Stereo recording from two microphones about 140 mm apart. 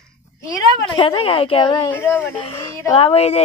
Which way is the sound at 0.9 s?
40° left (ahead or behind).